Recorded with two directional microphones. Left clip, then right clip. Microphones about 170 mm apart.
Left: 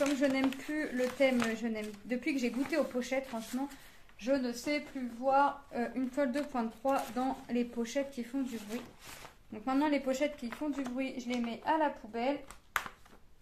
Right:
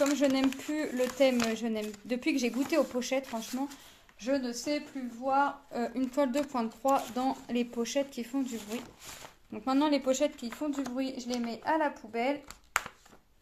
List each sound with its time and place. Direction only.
0.0 s speech: 40° right (ahead or behind)
9.5 s speech: 40° right (ahead or behind)